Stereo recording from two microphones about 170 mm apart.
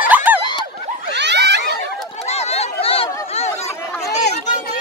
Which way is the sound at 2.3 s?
40° left (ahead or behind).